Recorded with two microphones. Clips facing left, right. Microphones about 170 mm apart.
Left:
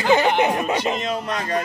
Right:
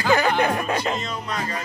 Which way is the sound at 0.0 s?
20° left (ahead or behind).